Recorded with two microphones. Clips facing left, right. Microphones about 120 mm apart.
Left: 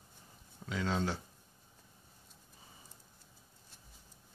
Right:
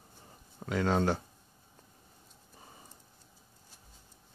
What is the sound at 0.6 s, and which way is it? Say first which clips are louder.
Speech: right 6 dB; 55° right (ahead or behind).